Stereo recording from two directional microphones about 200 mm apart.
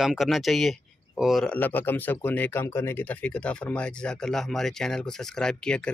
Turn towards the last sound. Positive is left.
turn(degrees=5)  # may be behind; listen again after turning